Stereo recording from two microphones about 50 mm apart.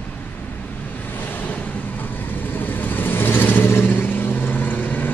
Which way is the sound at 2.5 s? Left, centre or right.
Left.